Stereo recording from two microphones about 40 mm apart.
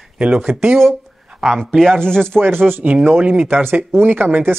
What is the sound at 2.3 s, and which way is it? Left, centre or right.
Speech, right.